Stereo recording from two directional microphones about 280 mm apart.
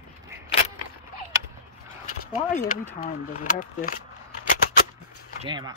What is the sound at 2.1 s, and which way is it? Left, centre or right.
Speech, left.